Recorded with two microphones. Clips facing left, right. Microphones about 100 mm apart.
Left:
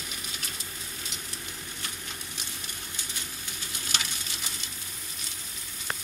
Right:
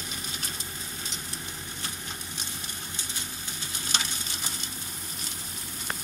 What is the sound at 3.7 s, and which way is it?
Frying, 30° right (ahead or behind).